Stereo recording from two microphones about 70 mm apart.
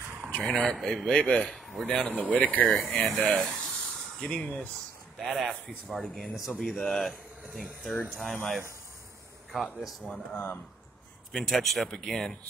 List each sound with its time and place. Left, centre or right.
0.4 s speech: centre
2.3 s speech: left
3.3 s speech: centre
4.2 s speech: centre
5.2 s speech: centre
10.3 s speech: left
11.3 s speech: centre